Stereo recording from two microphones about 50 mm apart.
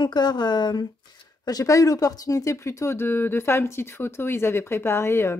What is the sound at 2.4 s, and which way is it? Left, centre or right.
Speech, left.